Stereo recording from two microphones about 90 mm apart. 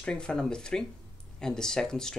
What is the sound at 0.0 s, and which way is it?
Speech, 10° left (ahead or behind).